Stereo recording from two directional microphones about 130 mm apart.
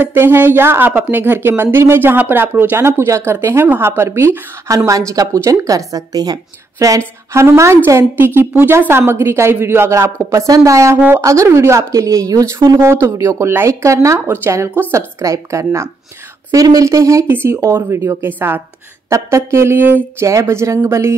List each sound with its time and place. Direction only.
0.0 s speech: 15° right (ahead or behind)